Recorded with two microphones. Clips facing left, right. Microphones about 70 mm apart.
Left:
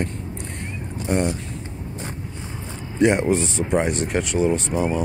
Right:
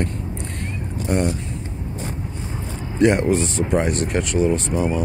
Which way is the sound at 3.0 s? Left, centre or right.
Centre.